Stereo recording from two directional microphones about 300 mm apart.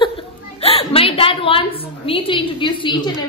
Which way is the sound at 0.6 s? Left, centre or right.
Centre.